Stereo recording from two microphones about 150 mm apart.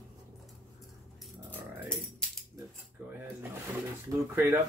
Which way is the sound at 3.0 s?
10° right (ahead or behind).